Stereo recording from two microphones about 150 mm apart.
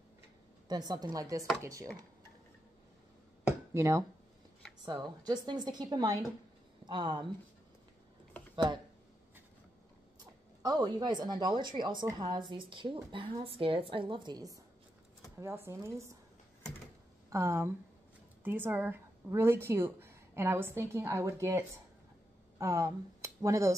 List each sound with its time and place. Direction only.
0.7 s a woman's voice: 25° right (ahead or behind)
3.4 s a sound: 20° right (ahead or behind)
4.8 s a woman's voice: 30° right (ahead or behind)
10.6 s a woman's voice: 25° right (ahead or behind)
17.3 s a woman's voice: 20° right (ahead or behind)